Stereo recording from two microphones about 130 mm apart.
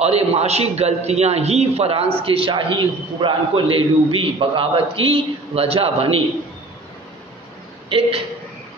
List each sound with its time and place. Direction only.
0.0 s a man's voice: 55° right (ahead or behind)